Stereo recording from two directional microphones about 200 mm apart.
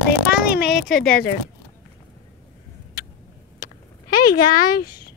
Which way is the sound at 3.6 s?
45° left (ahead or behind).